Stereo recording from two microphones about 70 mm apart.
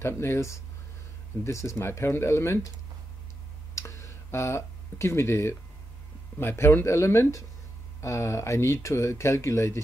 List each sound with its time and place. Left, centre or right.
0.0 s speech: left
3.7 s a sound: left
6.4 s speech: left